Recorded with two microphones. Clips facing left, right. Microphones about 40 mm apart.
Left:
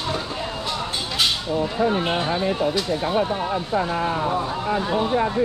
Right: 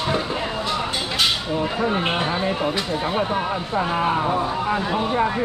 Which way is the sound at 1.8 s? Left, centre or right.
Centre.